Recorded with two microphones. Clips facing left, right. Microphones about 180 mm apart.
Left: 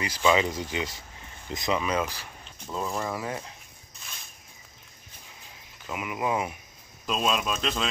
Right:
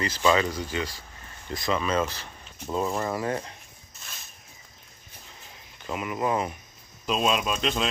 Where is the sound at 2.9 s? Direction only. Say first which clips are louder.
Right 3 dB; centre (ahead or behind).